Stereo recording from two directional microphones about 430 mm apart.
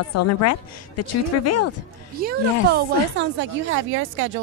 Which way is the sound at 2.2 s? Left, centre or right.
Right.